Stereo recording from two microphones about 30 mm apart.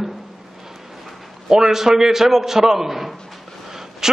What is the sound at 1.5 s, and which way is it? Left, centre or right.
A man's voice, centre.